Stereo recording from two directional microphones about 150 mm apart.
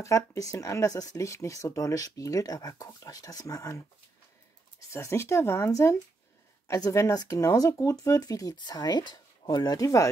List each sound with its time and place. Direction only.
0.0 s speech: 20° left (ahead or behind)